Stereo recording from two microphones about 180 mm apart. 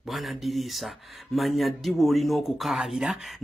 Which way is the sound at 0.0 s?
Centre (ahead or behind).